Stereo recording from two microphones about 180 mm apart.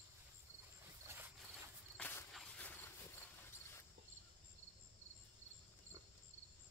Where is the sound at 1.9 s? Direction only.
5° left (ahead or behind).